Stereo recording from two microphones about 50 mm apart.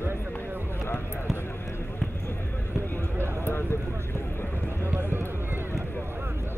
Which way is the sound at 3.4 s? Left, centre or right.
Left.